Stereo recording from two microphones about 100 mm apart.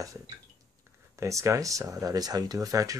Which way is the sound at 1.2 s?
30° right (ahead or behind).